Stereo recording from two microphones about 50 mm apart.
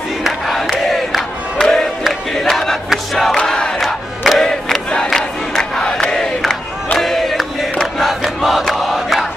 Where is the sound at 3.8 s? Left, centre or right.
Centre.